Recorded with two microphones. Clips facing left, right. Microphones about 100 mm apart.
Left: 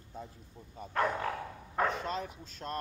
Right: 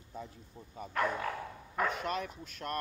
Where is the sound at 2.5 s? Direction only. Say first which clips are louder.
Right 1 dB; 25° left (ahead or behind).